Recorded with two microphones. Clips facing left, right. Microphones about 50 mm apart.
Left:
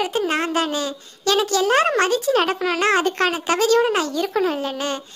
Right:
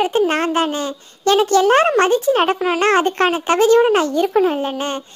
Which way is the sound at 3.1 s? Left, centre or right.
Right.